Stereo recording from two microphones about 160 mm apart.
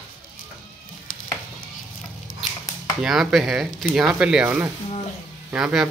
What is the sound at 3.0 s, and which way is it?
A man's voice, centre (ahead or behind).